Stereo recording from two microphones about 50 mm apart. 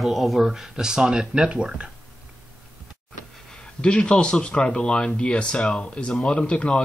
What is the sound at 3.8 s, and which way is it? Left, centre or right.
Speech, left.